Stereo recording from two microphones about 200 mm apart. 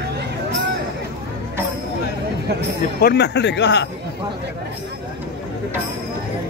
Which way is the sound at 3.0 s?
55° left (ahead or behind).